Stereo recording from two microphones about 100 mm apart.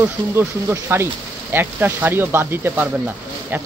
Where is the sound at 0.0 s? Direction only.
20° right (ahead or behind).